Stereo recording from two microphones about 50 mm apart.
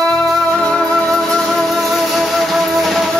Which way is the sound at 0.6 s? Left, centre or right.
Centre.